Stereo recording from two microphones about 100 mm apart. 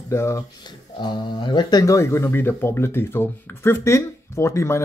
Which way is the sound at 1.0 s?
50° left (ahead or behind).